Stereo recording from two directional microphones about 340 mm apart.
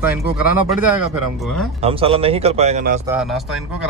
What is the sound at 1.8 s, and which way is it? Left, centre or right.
Speech, centre.